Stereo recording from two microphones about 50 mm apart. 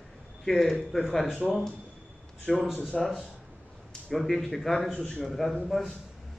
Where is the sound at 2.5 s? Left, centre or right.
Centre.